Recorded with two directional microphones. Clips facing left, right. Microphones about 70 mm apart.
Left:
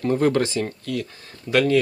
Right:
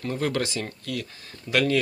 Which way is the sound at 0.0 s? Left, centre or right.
Left.